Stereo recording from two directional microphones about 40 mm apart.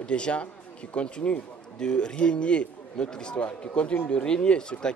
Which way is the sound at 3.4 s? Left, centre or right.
Left.